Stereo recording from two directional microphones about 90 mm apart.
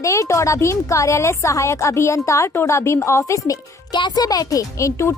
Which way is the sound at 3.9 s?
55° left (ahead or behind).